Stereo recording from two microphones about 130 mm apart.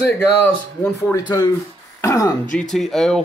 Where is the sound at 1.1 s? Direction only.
30° left (ahead or behind).